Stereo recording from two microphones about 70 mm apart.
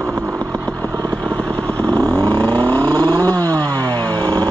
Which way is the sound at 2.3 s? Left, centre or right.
Centre.